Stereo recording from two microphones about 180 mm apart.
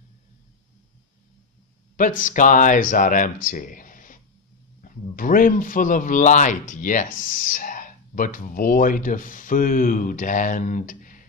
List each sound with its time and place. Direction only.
2.0 s speech: 50° left (ahead or behind)